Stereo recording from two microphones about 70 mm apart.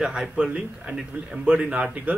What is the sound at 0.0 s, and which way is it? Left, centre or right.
A man's voice, centre.